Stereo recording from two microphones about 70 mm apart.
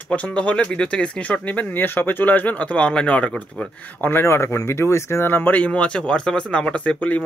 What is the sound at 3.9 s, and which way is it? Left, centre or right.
Speech, left.